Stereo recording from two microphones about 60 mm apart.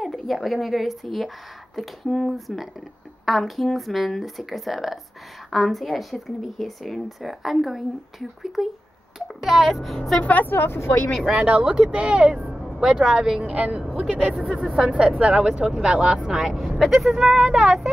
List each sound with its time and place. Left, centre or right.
0.0 s speech: centre
10.2 s speech: left
10.5 s speech: left
11.3 s speech: centre